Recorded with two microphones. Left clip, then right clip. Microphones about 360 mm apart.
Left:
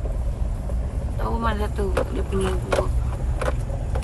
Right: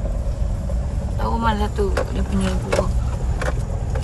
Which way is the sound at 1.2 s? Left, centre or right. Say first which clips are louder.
Right 4 dB; centre.